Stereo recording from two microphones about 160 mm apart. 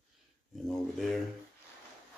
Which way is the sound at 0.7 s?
Centre (ahead or behind).